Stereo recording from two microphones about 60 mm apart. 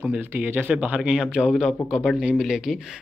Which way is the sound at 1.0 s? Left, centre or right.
Centre.